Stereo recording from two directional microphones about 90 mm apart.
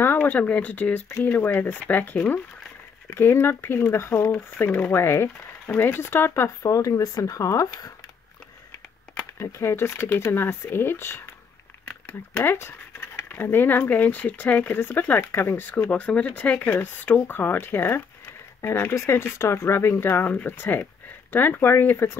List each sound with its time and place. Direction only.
0.0 s speech: 25° left (ahead or behind); by 7.9 s 40° left (ahead or behind)
9.4 s speech: 30° left (ahead or behind)